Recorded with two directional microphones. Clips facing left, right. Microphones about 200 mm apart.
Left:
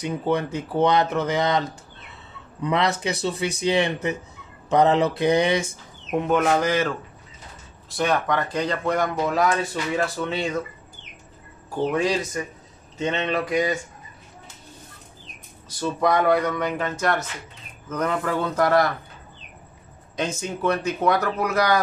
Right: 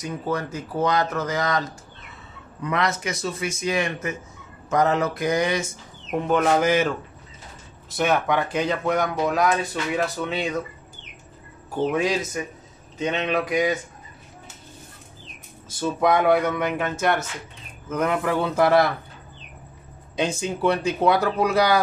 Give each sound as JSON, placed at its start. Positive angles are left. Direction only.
{"t": 0.0, "sound": "speech", "side_deg": 30}
{"t": 2.6, "sound": "a man's voice", "side_deg": 25}
{"t": 6.1, "sound": "speech", "side_deg": 0}
{"t": 11.9, "sound": "speech", "side_deg": 0}
{"t": 15.8, "sound": "speech", "side_deg": -5}
{"t": 20.3, "sound": "speech", "side_deg": -10}